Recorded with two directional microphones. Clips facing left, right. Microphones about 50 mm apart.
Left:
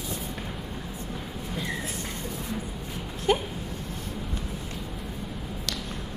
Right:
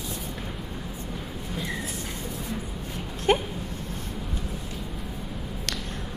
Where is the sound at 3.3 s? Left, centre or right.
Right.